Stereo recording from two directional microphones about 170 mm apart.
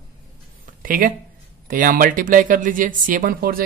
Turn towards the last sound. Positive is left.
turn(degrees=-55)  # may be behind; listen again after turning